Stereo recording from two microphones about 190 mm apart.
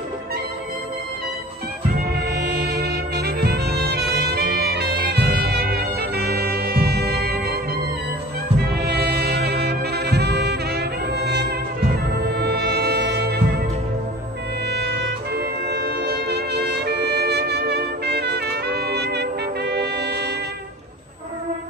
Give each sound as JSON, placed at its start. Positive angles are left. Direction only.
{"t": 2.1, "sound": "music", "side_deg": -60}
{"t": 8.6, "sound": "brass instrument", "side_deg": -60}
{"t": 12.3, "sound": "music", "side_deg": -60}
{"t": 14.7, "sound": "music", "side_deg": -60}